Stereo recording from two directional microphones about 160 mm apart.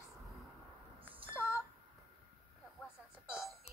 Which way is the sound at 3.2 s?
5° right (ahead or behind).